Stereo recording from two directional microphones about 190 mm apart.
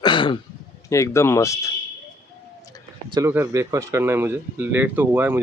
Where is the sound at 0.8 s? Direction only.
15° left (ahead or behind).